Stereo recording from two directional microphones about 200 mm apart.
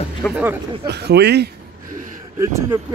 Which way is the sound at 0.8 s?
55° right (ahead or behind).